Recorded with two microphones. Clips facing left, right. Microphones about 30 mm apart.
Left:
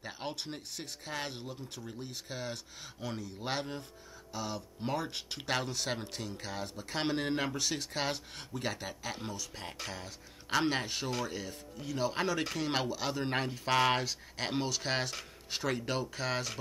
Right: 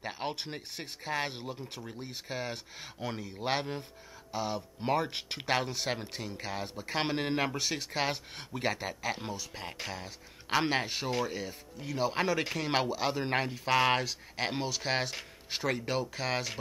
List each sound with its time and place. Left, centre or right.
0.0 s speech: right